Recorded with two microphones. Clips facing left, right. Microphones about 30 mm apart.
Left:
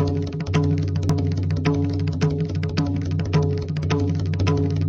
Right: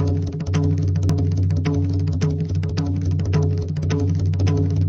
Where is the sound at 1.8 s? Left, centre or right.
Left.